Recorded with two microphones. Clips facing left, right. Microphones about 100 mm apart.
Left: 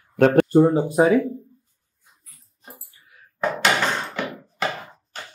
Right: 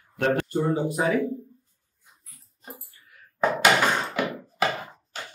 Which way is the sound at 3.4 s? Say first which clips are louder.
Right 1 dB; 5° right (ahead or behind).